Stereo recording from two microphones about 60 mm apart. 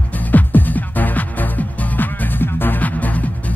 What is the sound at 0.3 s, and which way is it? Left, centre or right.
Music, left.